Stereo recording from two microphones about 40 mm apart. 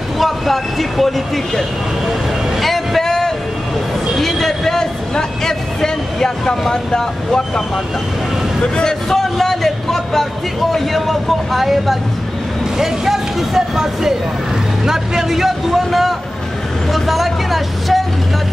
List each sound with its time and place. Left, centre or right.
0.2 s speech: centre
2.6 s a sound: centre
6.7 s speech: centre
9.1 s speech: centre